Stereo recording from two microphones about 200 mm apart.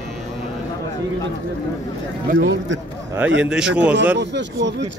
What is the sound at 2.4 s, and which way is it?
Speech, 65° right (ahead or behind).